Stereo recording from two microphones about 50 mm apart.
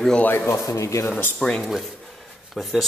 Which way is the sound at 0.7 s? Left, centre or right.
Left.